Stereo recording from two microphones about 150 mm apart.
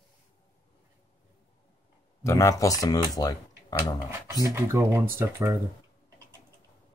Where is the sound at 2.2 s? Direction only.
20° left (ahead or behind).